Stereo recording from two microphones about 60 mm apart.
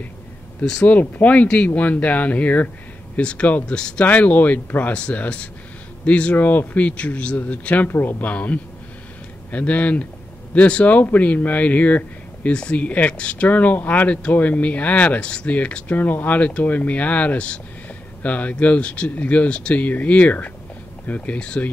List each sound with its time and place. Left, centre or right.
0.8 s speech: left
4.0 s speech: left
7.9 s speech: left; by 21.6 s centre